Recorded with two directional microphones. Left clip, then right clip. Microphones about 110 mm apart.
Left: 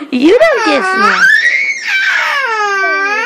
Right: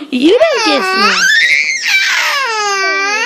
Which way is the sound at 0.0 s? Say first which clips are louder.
Left 1 dB; 40° right (ahead or behind).